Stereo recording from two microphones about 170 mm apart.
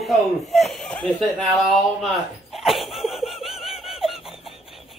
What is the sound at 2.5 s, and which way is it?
Laughter, centre (ahead or behind).